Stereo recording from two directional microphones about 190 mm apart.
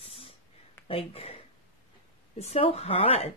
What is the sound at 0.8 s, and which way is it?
A woman's voice, 30° left (ahead or behind).